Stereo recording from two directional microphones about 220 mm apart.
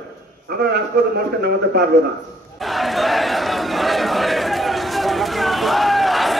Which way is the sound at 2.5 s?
Centre (ahead or behind).